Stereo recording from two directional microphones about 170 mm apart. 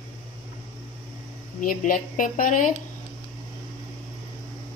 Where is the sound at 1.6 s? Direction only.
50° left (ahead or behind).